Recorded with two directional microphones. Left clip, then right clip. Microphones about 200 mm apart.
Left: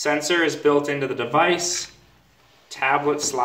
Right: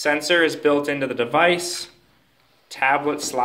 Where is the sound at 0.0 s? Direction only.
40° right (ahead or behind).